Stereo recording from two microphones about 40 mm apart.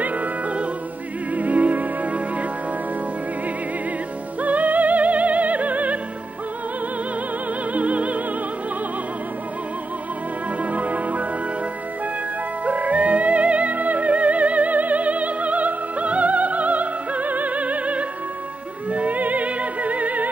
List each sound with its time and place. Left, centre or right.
0.0 s opera: right
1.3 s music: right
4.4 s music: right
7.7 s music: right
10.6 s music: right
12.6 s music: right